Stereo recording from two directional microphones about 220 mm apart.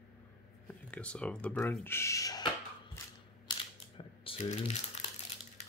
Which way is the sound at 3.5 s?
25° left (ahead or behind).